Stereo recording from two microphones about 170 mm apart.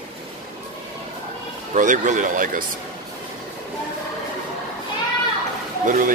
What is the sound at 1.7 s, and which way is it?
Speech, 50° right (ahead or behind).